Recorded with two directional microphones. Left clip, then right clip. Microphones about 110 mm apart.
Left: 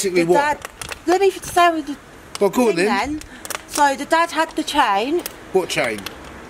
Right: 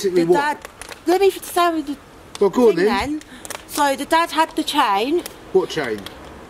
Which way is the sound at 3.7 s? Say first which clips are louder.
Left 1 dB; 10° right (ahead or behind).